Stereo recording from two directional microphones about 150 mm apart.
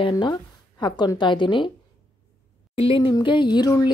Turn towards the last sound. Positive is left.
turn(degrees=25)  # may be behind; listen again after turning